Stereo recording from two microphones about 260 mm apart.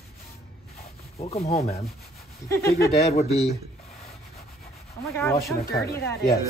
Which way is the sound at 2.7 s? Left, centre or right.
Left.